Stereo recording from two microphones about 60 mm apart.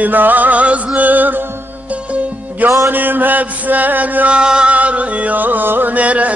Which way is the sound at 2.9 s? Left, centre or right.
Right.